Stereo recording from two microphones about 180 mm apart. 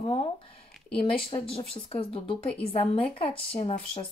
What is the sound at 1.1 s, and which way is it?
A woman's voice, 30° left (ahead or behind).